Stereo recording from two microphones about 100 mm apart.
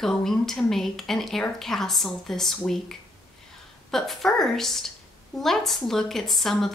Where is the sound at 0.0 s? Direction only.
5° left (ahead or behind).